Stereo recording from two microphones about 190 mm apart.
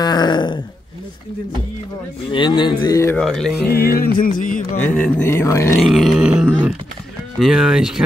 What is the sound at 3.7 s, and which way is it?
Music, 55° left (ahead or behind).